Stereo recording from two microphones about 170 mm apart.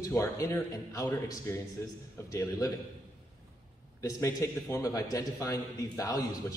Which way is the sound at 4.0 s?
20° left (ahead or behind).